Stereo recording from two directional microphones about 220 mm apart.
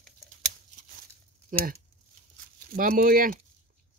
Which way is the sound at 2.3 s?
40° right (ahead or behind).